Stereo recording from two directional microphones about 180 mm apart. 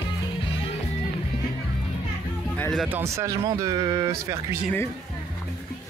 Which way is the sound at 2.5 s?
10° left (ahead or behind).